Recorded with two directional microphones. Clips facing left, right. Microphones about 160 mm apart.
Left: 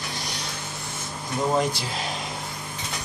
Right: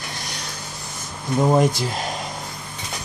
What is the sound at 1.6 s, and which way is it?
Speech, 45° right (ahead or behind).